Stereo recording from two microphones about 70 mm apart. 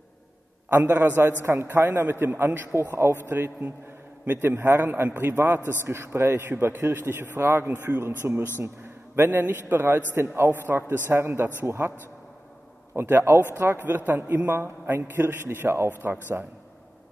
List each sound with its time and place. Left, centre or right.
0.8 s a man's voice: right
2.0 s a man's voice: right
12.9 s a man's voice: right